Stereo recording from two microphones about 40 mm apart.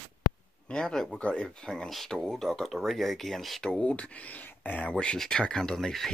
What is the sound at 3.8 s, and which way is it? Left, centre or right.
Speech, left.